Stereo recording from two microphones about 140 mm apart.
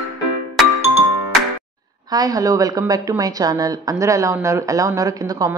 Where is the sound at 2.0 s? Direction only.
25° right (ahead or behind).